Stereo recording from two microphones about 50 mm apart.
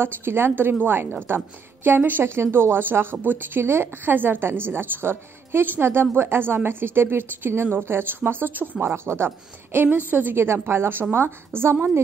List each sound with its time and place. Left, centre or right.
0.0 s a woman's voice: right
2.2 s a woman's voice: right
8.8 s a woman's voice: right